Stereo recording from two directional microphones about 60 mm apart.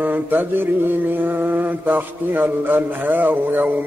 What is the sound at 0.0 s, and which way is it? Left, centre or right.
Mantra, right.